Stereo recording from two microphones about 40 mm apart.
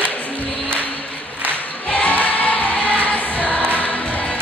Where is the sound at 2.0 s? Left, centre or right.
Left.